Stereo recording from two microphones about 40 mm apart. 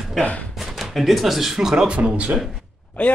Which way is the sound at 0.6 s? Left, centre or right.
Centre.